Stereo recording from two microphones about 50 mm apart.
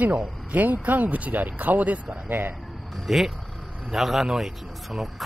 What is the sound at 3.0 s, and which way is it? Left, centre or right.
A man's voice, centre.